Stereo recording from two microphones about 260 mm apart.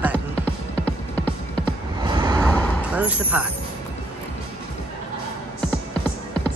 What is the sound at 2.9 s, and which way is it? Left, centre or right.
Speech, centre.